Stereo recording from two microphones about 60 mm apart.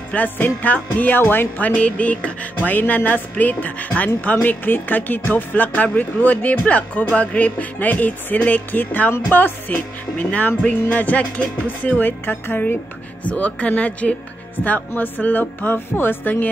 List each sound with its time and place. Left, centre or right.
0.1 s speech: left
1.7 s speech: left
13.3 s speech: left